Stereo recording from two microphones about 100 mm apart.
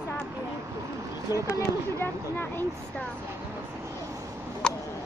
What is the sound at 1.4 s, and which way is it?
Speech, 25° left (ahead or behind).